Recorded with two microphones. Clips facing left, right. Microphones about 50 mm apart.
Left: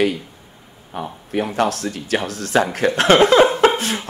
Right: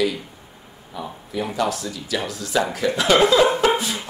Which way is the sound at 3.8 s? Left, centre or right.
Left.